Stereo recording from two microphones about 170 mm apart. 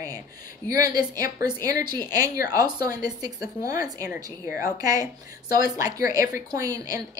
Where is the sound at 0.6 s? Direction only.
20° right (ahead or behind).